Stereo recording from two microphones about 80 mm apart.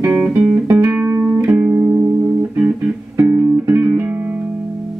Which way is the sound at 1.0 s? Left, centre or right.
Right.